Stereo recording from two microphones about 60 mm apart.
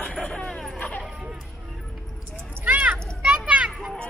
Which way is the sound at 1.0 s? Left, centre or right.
Centre.